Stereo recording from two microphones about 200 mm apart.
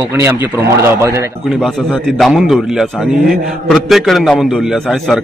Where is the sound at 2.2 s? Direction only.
Centre (ahead or behind).